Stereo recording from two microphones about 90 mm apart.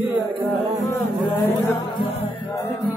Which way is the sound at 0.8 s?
25° left (ahead or behind).